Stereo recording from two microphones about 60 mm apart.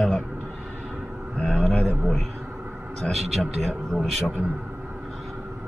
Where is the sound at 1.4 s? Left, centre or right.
Centre.